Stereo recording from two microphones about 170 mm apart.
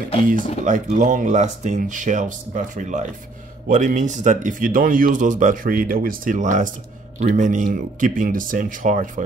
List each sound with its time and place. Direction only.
0.7 s speech: 45° right (ahead or behind)